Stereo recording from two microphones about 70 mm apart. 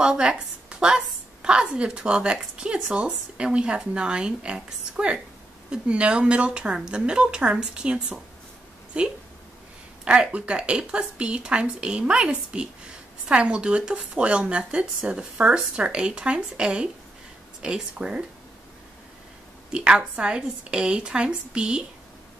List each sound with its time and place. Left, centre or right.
0.0 s a woman's voice: centre
19.7 s a woman's voice: centre